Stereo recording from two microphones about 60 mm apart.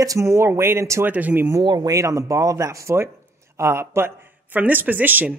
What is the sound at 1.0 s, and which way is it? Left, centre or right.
Speech, right.